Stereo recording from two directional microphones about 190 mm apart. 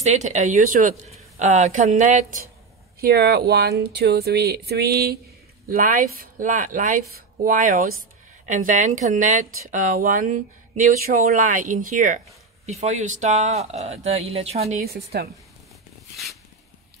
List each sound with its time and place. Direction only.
0.0 s speech: 35° right (ahead or behind)
3.0 s speech: 55° right (ahead or behind); by 14.6 s 35° right (ahead or behind)
14.8 s speech: 55° right (ahead or behind)